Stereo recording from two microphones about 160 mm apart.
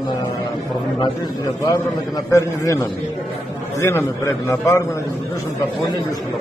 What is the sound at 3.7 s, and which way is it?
A man's voice, 15° left (ahead or behind).